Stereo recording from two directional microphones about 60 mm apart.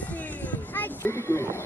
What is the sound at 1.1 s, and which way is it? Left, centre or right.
Speech, left.